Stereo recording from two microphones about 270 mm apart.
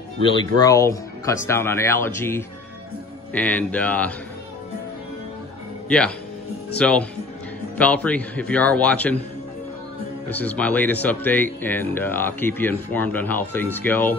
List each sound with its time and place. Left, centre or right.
0.2 s a man's voice: centre
5.9 s a man's voice: centre
10.3 s speech: centre